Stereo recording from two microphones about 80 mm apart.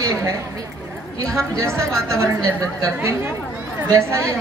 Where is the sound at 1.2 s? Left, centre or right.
Right.